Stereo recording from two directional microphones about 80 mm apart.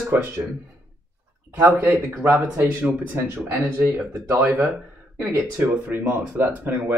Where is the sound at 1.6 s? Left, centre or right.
Right.